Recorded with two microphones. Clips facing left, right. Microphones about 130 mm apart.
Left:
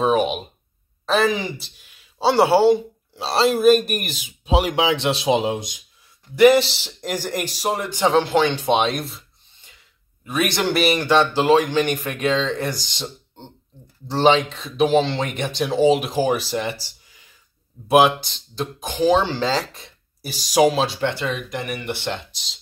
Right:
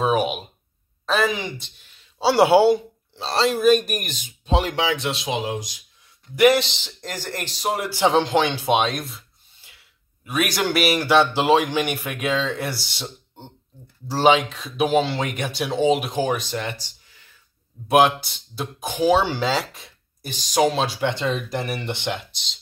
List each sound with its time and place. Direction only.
0.0 s speech: 5° right (ahead or behind)
2.2 s speech: 15° right (ahead or behind)
3.2 s speech: 5° left (ahead or behind)
4.8 s speech: 30° left (ahead or behind)
6.3 s speech: centre (ahead or behind)
8.0 s speech: 15° right (ahead or behind)
8.7 s rub: centre (ahead or behind)
10.2 s speech: centre (ahead or behind)
21.0 s speech: 20° right (ahead or behind)
22.3 s speech: centre (ahead or behind)